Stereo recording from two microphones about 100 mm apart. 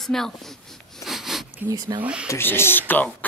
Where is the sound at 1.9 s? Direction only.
40° right (ahead or behind).